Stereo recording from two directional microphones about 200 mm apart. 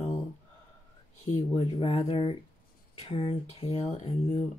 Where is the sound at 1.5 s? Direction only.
25° left (ahead or behind).